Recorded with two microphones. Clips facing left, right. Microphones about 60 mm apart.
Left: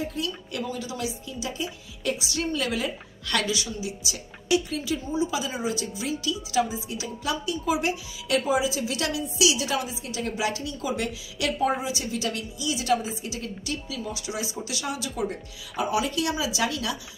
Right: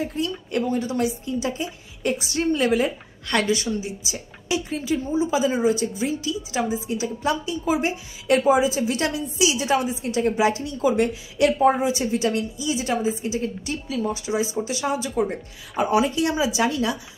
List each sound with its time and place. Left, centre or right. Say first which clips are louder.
0.2 s a woman's voice: right 6 dB; right
4.0 s a woman's voice: right 2 dB; right